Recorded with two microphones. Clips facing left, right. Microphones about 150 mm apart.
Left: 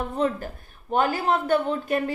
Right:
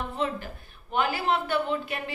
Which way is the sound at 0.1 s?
45° left (ahead or behind).